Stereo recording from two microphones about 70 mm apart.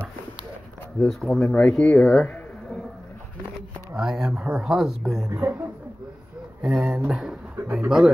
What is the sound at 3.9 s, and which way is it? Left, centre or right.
Speech, centre.